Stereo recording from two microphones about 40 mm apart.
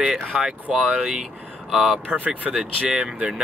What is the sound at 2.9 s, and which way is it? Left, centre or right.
Speech, right.